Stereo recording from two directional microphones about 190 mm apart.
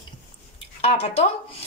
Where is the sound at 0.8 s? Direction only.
30° left (ahead or behind).